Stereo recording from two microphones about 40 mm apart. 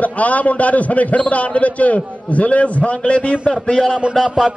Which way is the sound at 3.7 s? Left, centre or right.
Centre.